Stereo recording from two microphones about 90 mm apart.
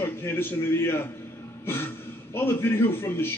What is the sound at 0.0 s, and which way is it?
A man's voice, 25° left (ahead or behind).